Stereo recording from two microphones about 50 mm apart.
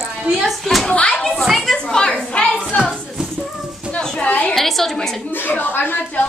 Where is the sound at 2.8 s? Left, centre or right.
Centre.